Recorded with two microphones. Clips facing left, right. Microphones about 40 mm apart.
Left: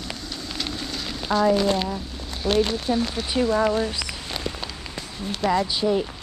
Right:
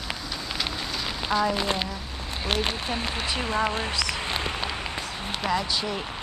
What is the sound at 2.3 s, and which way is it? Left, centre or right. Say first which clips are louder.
Speech: left 5 dB; right.